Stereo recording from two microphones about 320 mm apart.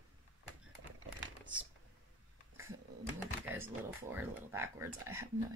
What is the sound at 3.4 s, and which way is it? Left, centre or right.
Speech, centre.